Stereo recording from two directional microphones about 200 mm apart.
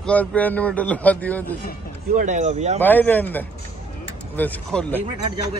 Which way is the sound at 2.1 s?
35° right (ahead or behind).